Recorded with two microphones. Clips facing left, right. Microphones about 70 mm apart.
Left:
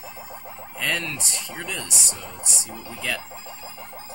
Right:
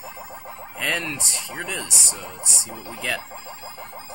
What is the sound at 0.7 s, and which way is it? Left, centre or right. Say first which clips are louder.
Speech: right 1 dB; centre.